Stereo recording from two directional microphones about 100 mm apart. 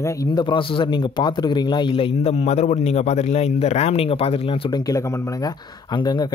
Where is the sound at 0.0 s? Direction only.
30° left (ahead or behind); by 4.6 s 65° left (ahead or behind).